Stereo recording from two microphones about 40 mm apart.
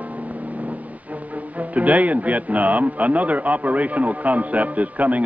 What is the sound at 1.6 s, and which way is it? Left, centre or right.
A man's voice, right.